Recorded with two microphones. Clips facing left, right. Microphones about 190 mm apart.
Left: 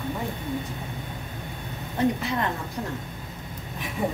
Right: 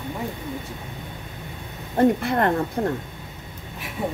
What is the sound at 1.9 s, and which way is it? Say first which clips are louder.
Speech: right 6 dB; 55° right (ahead or behind).